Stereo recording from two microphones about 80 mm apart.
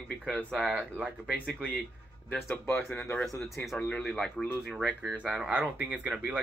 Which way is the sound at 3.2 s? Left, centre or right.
Centre.